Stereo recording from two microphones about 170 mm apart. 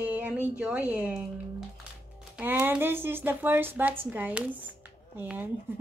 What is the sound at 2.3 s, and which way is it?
Speech, 10° right (ahead or behind).